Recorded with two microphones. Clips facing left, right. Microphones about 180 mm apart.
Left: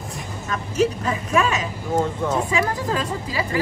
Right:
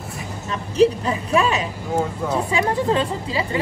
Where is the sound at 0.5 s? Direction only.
30° right (ahead or behind).